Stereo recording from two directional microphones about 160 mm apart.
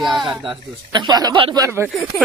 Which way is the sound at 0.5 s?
30° right (ahead or behind).